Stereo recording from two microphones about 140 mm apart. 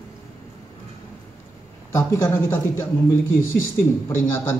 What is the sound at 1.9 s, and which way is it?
Speech, 20° left (ahead or behind).